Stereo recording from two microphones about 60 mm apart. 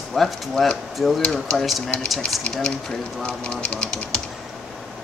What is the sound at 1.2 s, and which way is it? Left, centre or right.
Speech, centre.